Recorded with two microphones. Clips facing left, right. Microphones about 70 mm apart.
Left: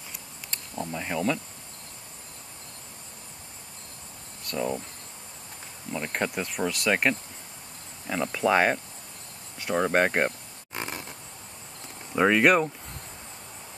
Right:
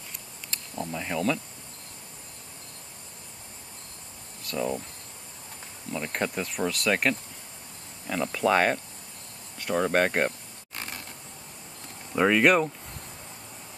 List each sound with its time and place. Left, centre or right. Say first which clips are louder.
0.5 s a sound: even; centre
1.0 s speech: even; centre
4.5 s speech: even; centre
5.9 s speech: even; centre
10.8 s a sound: left 4 dB; centre
12.1 s speech: even; centre